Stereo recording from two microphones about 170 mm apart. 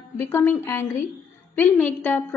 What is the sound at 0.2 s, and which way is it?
A woman's voice, 15° left (ahead or behind).